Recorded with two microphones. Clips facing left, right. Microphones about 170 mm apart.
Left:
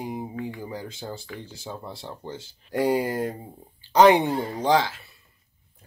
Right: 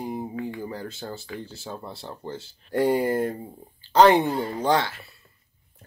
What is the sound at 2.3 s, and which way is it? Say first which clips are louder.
Speech: right 2 dB; 15° left (ahead or behind).